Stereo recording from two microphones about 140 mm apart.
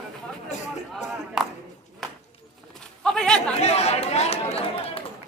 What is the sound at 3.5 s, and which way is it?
Speech, 50° left (ahead or behind).